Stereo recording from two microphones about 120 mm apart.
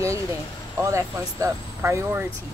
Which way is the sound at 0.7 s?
25° right (ahead or behind).